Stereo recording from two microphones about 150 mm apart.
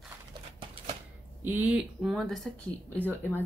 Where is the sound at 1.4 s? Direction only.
10° right (ahead or behind).